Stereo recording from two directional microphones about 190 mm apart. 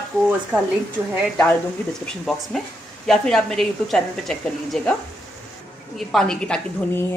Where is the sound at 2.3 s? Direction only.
Centre (ahead or behind).